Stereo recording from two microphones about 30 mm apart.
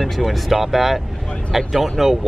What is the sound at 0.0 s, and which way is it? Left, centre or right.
Speech, centre.